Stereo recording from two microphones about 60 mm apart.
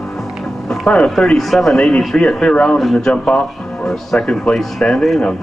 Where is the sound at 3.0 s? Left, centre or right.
Centre.